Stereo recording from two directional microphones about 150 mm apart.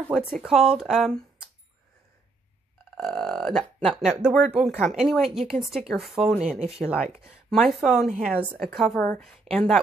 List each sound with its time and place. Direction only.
0.3 s a woman's voice: centre (ahead or behind)
3.0 s burping: 5° left (ahead or behind)
4.0 s a woman's voice: 5° right (ahead or behind)